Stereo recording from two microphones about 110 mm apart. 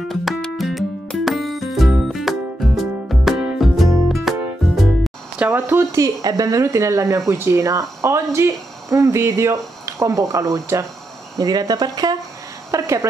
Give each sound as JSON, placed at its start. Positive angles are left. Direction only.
{"t": 0.1, "sound": "music", "side_deg": 0}
{"t": 5.4, "sound": "speech", "side_deg": -20}
{"t": 12.7, "sound": "speech", "side_deg": -25}